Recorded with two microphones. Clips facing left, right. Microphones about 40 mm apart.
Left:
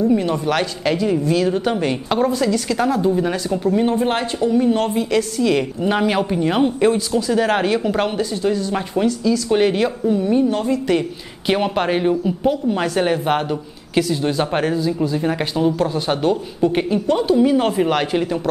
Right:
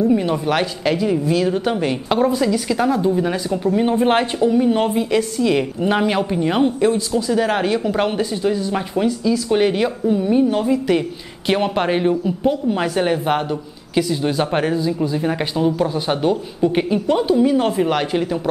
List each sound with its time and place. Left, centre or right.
0.1 s speech: centre
3.9 s speech: right
4.4 s speech: centre
6.8 s speech: centre
7.2 s speech: centre
8.1 s a woman's voice: centre
17.4 s speech: centre